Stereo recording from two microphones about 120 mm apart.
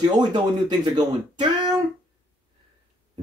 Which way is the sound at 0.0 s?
35° right (ahead or behind).